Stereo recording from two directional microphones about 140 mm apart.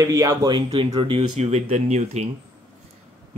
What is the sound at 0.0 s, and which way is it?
Speech, 20° right (ahead or behind).